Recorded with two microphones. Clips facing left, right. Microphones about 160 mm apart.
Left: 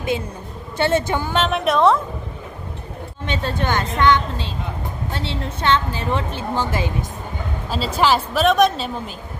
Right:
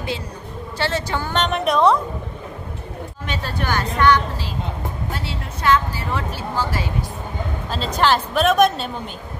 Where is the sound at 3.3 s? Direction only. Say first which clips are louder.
Left 3 dB; 25° left (ahead or behind).